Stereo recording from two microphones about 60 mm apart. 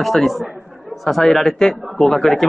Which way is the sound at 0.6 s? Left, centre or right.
Centre.